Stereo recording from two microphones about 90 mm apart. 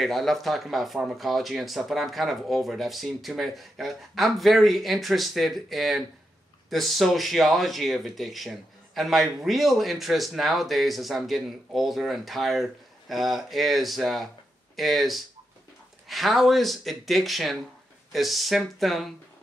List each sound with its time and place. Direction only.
0.0 s speech: centre (ahead or behind)